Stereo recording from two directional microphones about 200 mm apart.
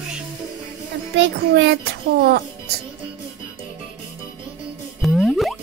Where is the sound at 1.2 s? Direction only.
60° right (ahead or behind).